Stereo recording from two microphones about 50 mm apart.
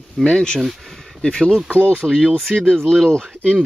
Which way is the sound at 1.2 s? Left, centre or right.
Centre.